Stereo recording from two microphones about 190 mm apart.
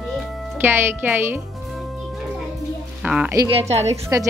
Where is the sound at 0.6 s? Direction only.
10° right (ahead or behind).